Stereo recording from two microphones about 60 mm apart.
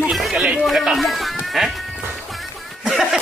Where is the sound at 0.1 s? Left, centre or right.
Centre.